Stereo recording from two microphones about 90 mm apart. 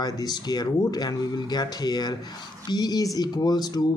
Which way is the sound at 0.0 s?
50° left (ahead or behind).